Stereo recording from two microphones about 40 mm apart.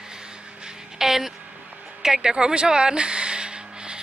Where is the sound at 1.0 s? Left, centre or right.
Centre.